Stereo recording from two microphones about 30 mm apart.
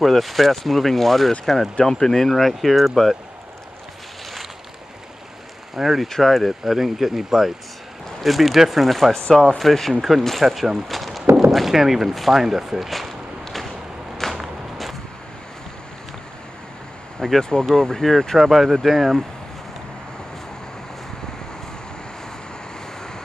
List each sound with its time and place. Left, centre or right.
0.0 s speech: centre
2.2 s speech: centre
5.8 s speech: centre
6.0 s speech: centre
6.3 s speech: centre
8.8 s speech: centre
12.9 s a sound: centre
14.2 s walk: centre
17.4 s speech: left
18.4 s speech: centre